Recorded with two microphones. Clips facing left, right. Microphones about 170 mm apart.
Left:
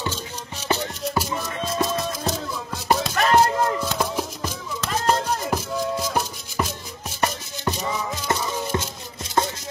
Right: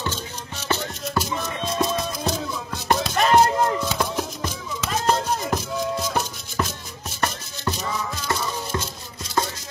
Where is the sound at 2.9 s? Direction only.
5° left (ahead or behind).